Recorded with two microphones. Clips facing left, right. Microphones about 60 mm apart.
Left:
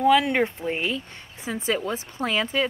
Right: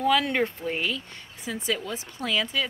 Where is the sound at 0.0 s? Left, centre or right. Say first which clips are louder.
Left 4 dB; centre.